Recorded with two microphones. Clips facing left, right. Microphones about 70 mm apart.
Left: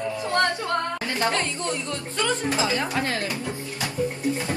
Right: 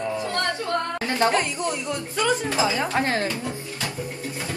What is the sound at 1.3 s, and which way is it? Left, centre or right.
Speech, centre.